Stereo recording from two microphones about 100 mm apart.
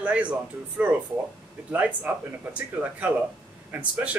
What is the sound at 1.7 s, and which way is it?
Speech, 15° right (ahead or behind).